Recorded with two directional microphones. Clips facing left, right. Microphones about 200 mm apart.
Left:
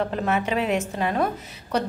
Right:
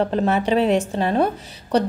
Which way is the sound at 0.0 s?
30° right (ahead or behind).